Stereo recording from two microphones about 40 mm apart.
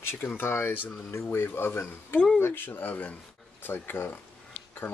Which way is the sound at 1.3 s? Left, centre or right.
Left.